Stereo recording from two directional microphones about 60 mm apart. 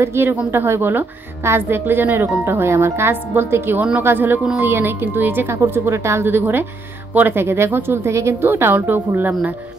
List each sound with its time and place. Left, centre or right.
0.0 s a woman's voice: right
8.5 s a woman's voice: right